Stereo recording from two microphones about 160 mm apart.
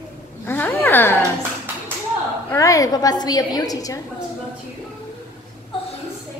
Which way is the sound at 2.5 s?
20° left (ahead or behind).